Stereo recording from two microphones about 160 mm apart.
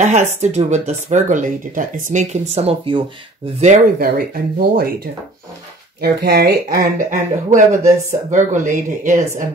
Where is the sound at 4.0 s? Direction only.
70° right (ahead or behind).